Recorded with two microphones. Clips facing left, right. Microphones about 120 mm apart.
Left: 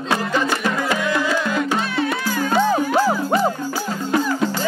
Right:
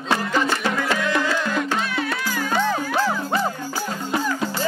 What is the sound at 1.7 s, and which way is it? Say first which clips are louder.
Music: left 3 dB; 30° left (ahead or behind).